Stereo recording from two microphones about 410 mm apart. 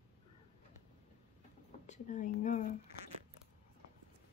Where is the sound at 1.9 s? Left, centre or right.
Centre.